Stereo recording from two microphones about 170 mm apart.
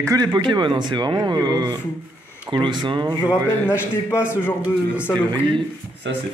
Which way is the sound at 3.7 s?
15° left (ahead or behind).